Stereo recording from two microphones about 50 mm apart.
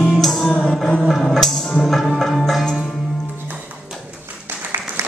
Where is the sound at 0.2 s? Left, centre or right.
Centre.